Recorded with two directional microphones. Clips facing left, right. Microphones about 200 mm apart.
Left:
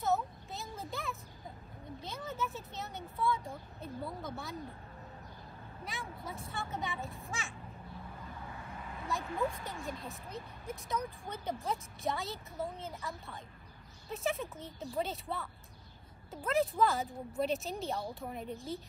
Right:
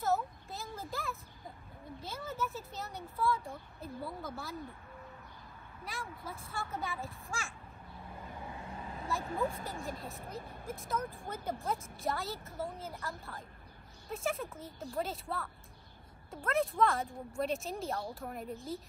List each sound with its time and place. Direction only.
0.0 s a sound: centre (ahead or behind)
2.0 s speech: centre (ahead or behind)
5.9 s speech: centre (ahead or behind)
9.2 s speech: 35° right (ahead or behind)
10.3 s speech: centre (ahead or behind)